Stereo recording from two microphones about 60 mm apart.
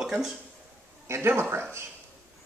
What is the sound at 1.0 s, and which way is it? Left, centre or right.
Speech, right.